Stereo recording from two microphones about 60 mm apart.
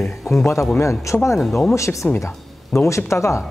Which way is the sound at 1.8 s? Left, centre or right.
Left.